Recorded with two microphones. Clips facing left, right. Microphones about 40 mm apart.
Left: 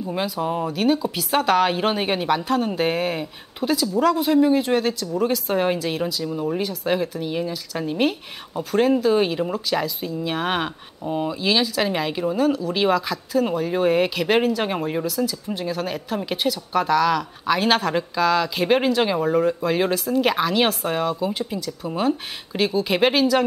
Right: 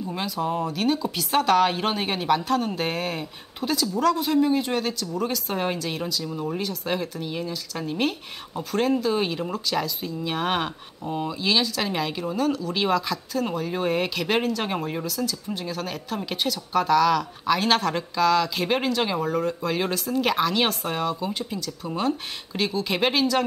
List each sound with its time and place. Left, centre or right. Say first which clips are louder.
0.0 s speech: left 3 dB; centre